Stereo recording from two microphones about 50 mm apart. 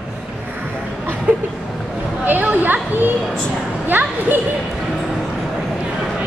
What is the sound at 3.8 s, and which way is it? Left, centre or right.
Speech, right.